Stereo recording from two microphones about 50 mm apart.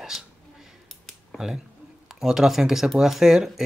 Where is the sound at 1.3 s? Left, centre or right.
Centre.